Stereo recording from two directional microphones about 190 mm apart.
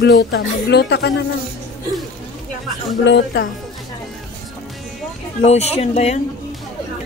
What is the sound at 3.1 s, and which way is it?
Speech, 70° left (ahead or behind).